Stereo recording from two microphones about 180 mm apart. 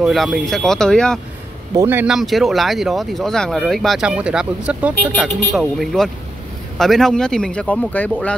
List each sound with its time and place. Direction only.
0.0 s speech: centre (ahead or behind)
1.8 s speech: 10° right (ahead or behind); by 8.4 s 10° left (ahead or behind)